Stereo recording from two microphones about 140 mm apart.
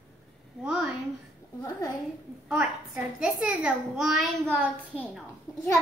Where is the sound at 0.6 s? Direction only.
5° right (ahead or behind).